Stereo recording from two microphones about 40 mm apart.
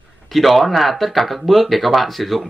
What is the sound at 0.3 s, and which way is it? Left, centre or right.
Speech, centre.